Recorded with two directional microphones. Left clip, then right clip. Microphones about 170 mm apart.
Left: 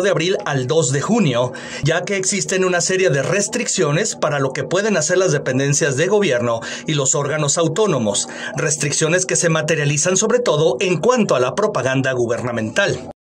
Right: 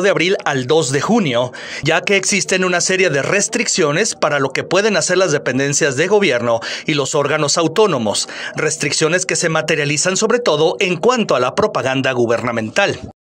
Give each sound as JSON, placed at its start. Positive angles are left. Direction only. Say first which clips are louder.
{"t": 0.0, "sound": "a man's voice", "louder": "right 3 dB", "side_deg": -35}